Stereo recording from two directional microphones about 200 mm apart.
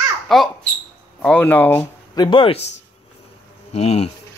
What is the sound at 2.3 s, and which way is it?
Speech, 25° left (ahead or behind).